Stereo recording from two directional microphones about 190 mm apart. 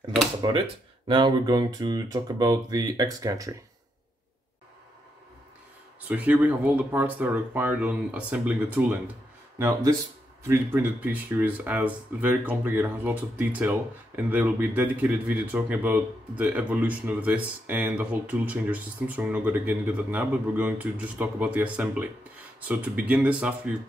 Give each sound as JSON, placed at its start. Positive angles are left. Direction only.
{"t": 0.4, "sound": "speech", "side_deg": -20}
{"t": 6.0, "sound": "speech", "side_deg": -10}